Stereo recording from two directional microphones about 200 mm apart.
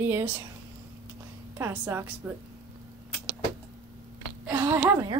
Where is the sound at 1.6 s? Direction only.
10° right (ahead or behind).